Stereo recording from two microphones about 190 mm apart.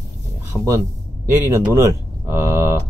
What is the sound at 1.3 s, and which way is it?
Speech, 15° right (ahead or behind).